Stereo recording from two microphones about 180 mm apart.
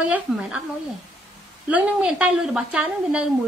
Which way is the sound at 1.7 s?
5° right (ahead or behind).